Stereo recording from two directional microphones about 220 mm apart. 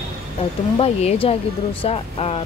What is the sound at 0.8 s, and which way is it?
Speech, 25° left (ahead or behind).